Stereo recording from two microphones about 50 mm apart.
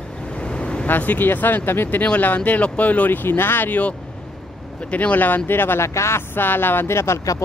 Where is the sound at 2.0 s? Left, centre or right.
Left.